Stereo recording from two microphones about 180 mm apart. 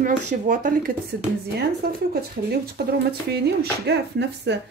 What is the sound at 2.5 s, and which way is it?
Speech, 65° right (ahead or behind).